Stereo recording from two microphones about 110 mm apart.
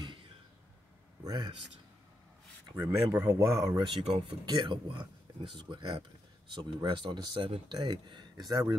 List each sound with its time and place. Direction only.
0.0 s a sound: 50° right (ahead or behind)
1.2 s a man's voice: 40° right (ahead or behind)
2.7 s speech: 20° right (ahead or behind)
3.3 s speech: 35° right (ahead or behind)
4.0 s speech: 55° right (ahead or behind)
4.5 s speech: 45° right (ahead or behind)